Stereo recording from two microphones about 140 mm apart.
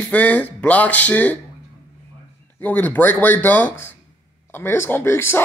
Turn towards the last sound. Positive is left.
turn(degrees=15)  # may be behind; listen again after turning